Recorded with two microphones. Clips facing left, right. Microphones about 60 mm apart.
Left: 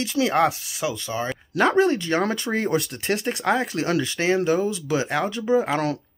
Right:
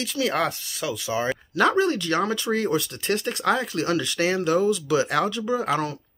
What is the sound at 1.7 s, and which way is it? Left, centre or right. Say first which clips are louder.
Speech: left 2 dB; left.